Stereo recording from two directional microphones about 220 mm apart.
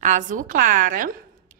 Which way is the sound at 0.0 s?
35° right (ahead or behind).